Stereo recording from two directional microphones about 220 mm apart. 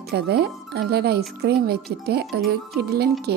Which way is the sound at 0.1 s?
45° right (ahead or behind).